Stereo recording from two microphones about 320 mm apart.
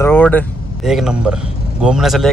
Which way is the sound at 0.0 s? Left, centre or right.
Centre.